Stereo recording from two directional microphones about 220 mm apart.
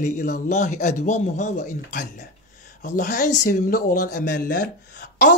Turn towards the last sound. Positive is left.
turn(degrees=50)  # may be behind; listen again after turning